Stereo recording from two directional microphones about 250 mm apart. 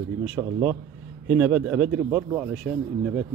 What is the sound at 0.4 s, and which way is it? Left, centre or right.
Speech, centre.